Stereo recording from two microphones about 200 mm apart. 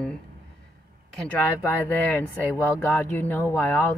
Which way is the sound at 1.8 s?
10° left (ahead or behind).